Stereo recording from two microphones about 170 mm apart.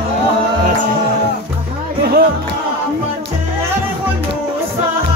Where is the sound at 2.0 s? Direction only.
65° right (ahead or behind).